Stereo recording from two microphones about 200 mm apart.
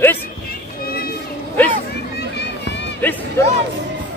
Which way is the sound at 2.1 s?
55° left (ahead or behind).